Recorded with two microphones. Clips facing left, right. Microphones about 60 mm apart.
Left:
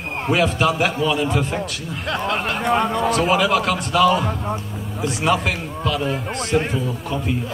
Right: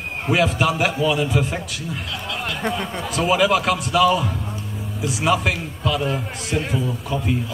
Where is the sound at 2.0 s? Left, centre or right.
Left.